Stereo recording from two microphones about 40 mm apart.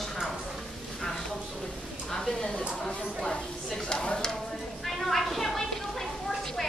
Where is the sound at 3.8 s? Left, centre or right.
Left.